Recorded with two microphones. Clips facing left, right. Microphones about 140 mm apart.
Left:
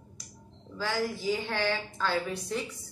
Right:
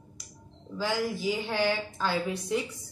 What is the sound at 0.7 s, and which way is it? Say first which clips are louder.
A woman's voice: right 2 dB; 15° right (ahead or behind).